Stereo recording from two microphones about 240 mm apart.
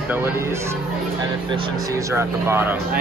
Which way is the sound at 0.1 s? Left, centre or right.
Centre.